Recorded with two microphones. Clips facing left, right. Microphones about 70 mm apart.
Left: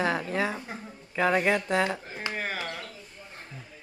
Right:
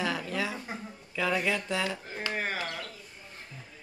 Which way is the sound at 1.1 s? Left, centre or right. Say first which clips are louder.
Left 5 dB; left.